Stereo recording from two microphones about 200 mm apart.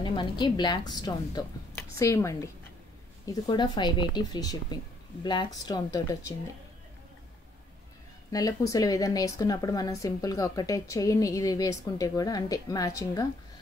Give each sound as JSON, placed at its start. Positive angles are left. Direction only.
{"t": 0.0, "sound": "a woman's voice", "side_deg": 25}
{"t": 8.3, "sound": "speech", "side_deg": 15}